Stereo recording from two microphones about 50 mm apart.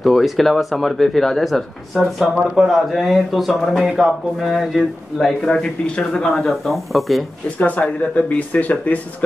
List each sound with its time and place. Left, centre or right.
0.0 s speech: centre
5.4 s speech: centre
7.5 s speech: left